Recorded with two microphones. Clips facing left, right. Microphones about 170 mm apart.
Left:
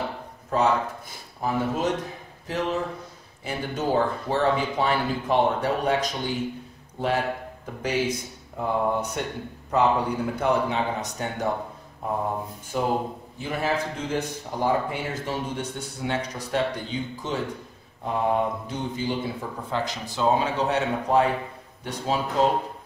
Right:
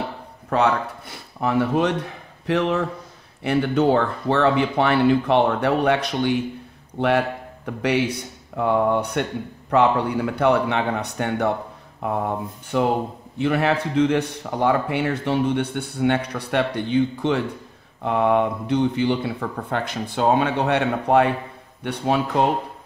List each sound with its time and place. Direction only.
0.5 s a man's voice: 65° right (ahead or behind)